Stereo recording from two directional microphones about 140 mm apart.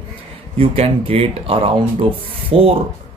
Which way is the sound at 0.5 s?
45° right (ahead or behind).